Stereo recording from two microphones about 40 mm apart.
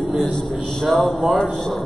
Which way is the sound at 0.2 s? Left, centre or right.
Left.